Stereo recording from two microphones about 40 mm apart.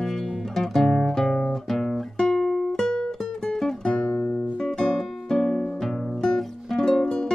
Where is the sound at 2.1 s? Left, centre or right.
Centre.